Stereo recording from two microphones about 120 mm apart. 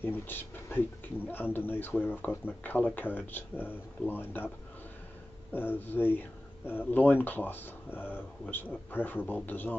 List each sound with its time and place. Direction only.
0.0 s speech: 15° left (ahead or behind)
5.5 s speech: 15° left (ahead or behind)